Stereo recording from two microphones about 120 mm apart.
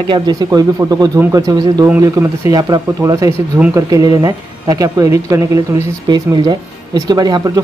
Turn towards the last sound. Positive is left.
turn(degrees=-35)  # may be behind; listen again after turning